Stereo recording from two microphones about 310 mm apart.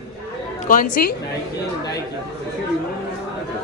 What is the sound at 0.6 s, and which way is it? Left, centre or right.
Speech, left.